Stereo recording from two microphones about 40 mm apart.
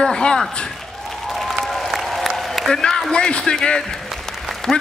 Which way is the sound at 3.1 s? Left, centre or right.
Left.